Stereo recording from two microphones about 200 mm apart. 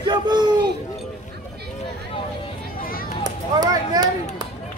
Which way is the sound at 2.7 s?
45° left (ahead or behind).